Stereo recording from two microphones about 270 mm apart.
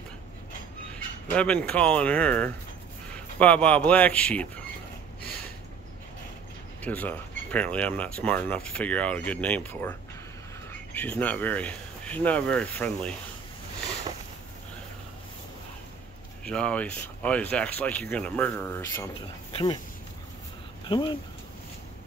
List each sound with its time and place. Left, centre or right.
1.3 s speech: centre
6.8 s speech: centre
16.4 s speech: centre
20.8 s speech: centre